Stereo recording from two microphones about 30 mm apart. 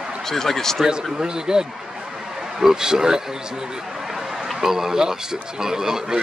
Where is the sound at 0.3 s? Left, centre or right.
Centre.